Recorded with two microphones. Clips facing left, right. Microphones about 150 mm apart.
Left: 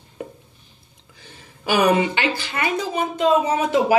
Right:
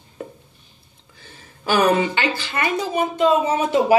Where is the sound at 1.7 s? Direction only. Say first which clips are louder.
Even; 15° left (ahead or behind).